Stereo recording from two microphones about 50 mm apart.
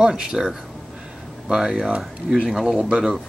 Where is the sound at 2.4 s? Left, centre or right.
Centre.